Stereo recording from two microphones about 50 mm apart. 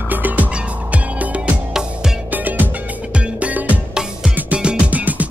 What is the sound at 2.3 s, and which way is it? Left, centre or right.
Music, right.